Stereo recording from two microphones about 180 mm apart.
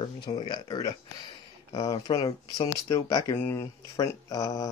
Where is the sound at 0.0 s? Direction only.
25° left (ahead or behind).